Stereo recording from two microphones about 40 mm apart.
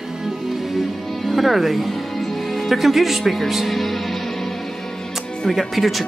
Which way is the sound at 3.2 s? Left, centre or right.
Centre.